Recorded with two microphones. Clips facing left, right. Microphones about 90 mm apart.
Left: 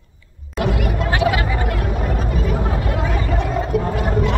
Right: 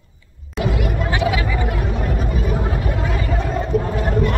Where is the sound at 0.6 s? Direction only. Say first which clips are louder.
Left 1 dB; 55° left (ahead or behind).